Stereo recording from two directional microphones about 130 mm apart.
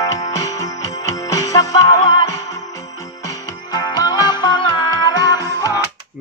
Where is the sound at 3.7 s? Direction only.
30° left (ahead or behind).